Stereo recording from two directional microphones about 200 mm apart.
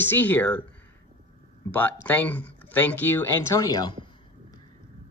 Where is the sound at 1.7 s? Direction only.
10° left (ahead or behind).